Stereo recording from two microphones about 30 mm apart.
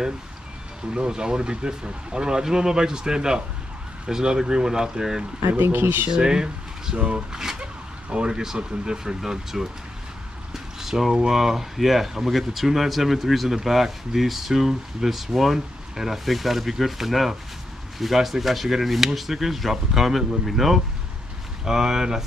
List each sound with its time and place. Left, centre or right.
0.9 s speech: right
7.0 s speech: right
7.3 s speech: right
9.0 s speech: centre
21.6 s speech: centre